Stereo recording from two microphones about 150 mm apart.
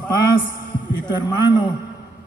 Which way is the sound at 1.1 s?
30° left (ahead or behind).